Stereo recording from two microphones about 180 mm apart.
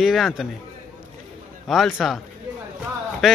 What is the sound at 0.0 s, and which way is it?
Speech, centre (ahead or behind).